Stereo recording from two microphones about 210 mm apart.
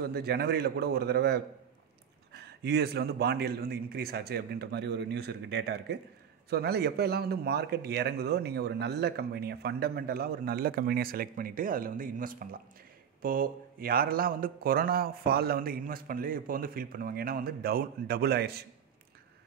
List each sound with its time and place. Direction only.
0.0 s speech: 50° right (ahead or behind)